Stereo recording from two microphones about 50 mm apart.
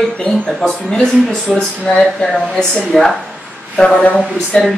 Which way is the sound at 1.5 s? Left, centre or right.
Centre.